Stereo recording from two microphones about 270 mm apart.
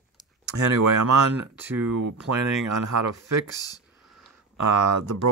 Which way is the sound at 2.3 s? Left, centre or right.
Right.